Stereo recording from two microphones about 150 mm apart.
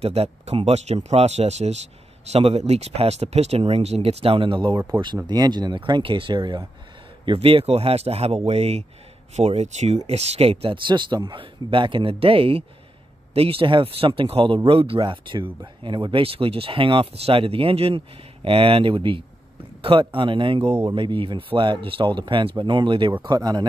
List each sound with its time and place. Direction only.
0.0 s speech: 40° right (ahead or behind)
4.7 s speech: 15° right (ahead or behind)
5.0 s speech: 30° right (ahead or behind)